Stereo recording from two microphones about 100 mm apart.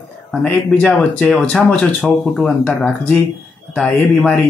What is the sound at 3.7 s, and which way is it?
Speech, 10° left (ahead or behind).